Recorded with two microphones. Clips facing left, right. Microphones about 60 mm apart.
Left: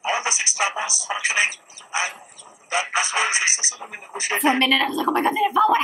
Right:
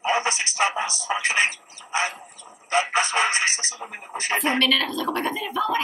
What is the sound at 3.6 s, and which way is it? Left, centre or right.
A woman's voice, centre.